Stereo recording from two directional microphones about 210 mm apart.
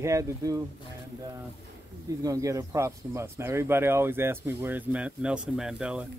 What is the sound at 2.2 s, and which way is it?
Speech, 15° right (ahead or behind).